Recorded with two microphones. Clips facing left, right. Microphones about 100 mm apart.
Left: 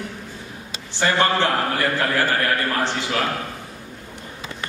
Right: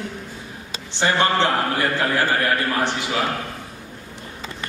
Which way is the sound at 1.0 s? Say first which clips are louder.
Even; 20° right (ahead or behind).